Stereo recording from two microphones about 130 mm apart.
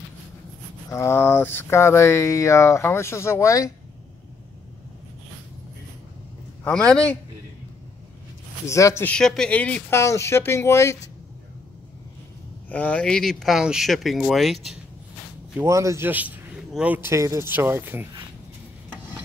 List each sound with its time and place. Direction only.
0.8 s speech: 20° left (ahead or behind)
6.6 s speech: 5° left (ahead or behind)
8.6 s speech: 25° left (ahead or behind)
9.0 s speech: 5° left (ahead or behind); by 11.0 s 20° left (ahead or behind)
12.6 s speech: 10° left (ahead or behind)
15.6 s speech: 25° right (ahead or behind)